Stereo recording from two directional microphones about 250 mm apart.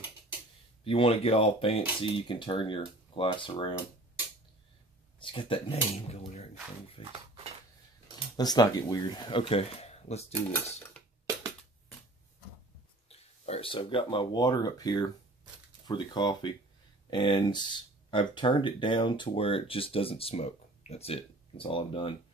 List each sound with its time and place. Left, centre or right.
0.8 s speech: left
5.2 s speech: left
8.4 s speech: centre
13.1 s speech: left